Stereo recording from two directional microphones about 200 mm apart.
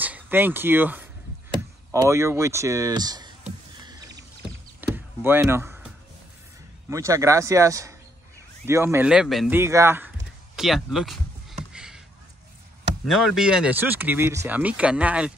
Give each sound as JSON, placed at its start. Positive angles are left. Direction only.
{"t": 0.0, "sound": "speech", "side_deg": -10}
{"t": 4.7, "sound": "chop", "side_deg": -10}
{"t": 6.9, "sound": "speech", "side_deg": -15}
{"t": 9.6, "sound": "speech", "side_deg": -15}
{"t": 11.7, "sound": "a sound", "side_deg": -5}
{"t": 13.0, "sound": "speech", "side_deg": 0}